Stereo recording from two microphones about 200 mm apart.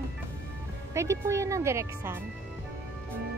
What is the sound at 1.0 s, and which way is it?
Speech, 15° right (ahead or behind).